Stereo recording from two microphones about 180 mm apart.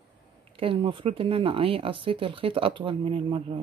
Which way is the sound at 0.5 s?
30° right (ahead or behind).